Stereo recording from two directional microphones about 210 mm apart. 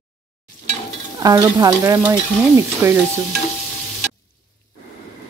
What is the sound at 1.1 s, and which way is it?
Stir, 15° right (ahead or behind).